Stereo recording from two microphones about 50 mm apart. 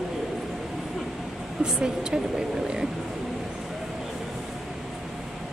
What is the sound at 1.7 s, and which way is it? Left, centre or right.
Speech, centre.